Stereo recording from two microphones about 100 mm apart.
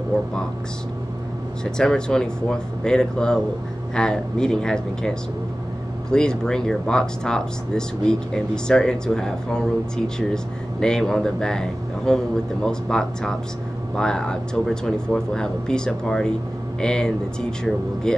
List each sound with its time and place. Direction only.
1.6 s speech: 5° left (ahead or behind)